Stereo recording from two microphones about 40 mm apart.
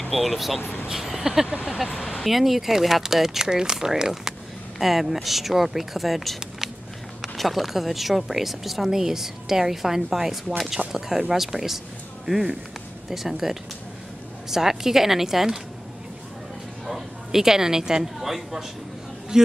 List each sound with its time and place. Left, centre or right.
0.1 s speech: centre
16.8 s speech: centre
18.2 s speech: centre
19.3 s a man's voice: centre